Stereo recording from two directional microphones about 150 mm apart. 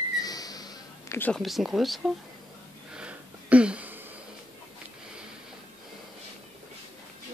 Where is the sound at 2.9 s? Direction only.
5° right (ahead or behind).